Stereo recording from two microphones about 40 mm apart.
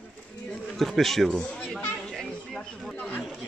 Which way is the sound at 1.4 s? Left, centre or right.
Left.